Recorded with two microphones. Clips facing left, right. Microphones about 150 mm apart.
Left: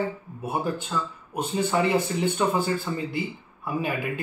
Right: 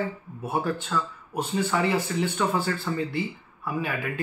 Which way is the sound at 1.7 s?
20° left (ahead or behind).